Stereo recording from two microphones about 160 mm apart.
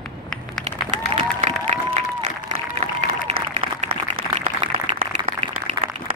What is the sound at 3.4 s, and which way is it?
Applause, 65° right (ahead or behind).